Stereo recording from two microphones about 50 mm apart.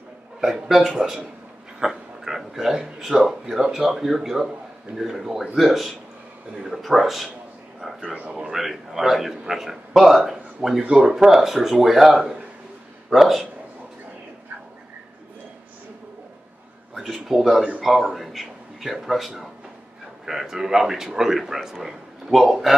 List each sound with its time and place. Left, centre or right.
0.4 s a man's voice: centre
8.2 s speech: right
8.5 s a man's voice: centre
16.9 s a man's voice: centre